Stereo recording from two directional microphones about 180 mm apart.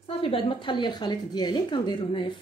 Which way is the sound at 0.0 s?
30° left (ahead or behind).